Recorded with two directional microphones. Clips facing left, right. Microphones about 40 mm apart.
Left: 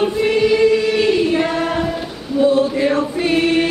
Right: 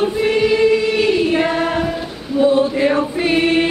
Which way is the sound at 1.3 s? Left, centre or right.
Right.